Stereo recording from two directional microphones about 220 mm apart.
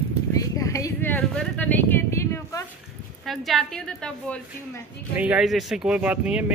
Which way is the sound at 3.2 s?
Centre (ahead or behind).